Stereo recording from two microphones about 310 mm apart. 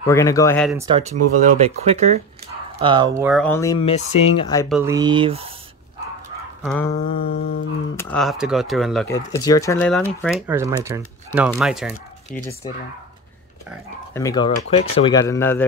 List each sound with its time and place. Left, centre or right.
0.0 s speech: centre
0.7 s speech: centre
3.2 s speech: centre
4.6 s speech: centre
4.9 s speech: centre
6.6 s speech: centre
7.2 s humming: left
7.9 s speech: centre
10.0 s speech: centre
14.1 s speech: centre